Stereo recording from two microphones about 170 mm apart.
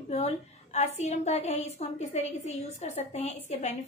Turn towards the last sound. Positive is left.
turn(degrees=40)  # may be behind; listen again after turning